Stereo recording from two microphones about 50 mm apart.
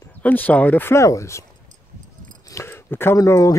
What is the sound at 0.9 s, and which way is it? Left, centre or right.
Speech, left.